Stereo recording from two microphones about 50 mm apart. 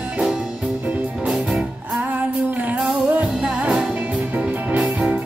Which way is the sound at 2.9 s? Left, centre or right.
Right.